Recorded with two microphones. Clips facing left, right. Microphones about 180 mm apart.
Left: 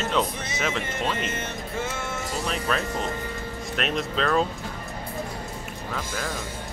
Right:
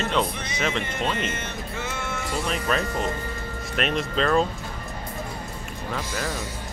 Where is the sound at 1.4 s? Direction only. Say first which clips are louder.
Left 2 dB; 45° left (ahead or behind).